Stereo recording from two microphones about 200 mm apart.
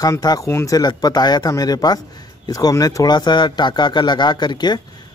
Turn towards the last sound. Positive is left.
turn(degrees=20)  # may be behind; listen again after turning